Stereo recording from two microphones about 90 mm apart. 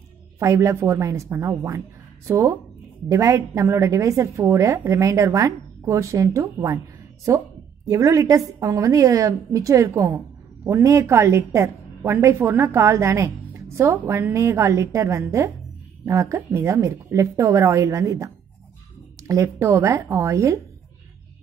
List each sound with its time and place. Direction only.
0.4 s a woman's voice: 35° right (ahead or behind)